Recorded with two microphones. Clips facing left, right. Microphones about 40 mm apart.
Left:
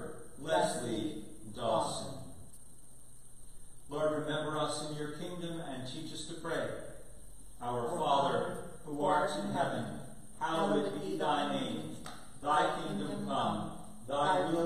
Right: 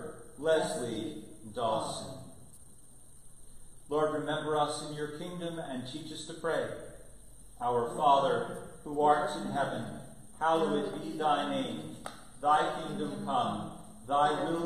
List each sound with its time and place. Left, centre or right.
0.2 s a man's voice: centre
3.9 s a man's voice: centre
7.6 s a man's voice: centre
14.1 s a man's voice: centre